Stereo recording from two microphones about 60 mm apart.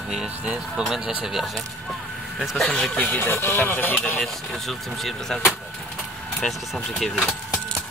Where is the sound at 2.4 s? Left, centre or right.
Centre.